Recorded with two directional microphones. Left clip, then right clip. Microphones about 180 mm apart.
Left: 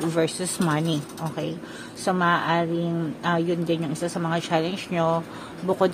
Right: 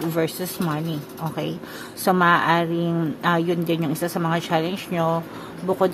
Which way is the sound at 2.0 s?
15° right (ahead or behind).